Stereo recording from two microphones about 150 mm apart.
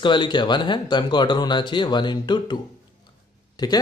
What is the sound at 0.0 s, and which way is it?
Speech, 30° left (ahead or behind).